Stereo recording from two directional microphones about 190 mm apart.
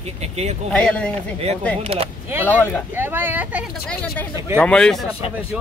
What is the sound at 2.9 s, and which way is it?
Speech, 10° right (ahead or behind).